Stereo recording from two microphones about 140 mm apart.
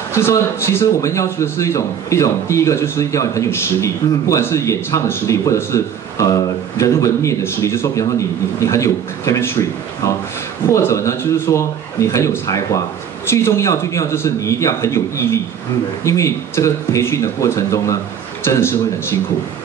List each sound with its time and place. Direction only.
0.1 s a man's voice: 20° left (ahead or behind)